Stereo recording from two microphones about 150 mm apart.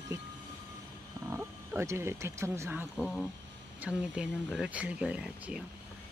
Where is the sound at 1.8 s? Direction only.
15° right (ahead or behind).